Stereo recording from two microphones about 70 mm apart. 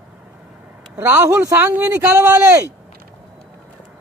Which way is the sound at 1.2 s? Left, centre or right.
Right.